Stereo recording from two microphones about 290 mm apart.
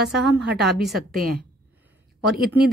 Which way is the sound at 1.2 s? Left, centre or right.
Right.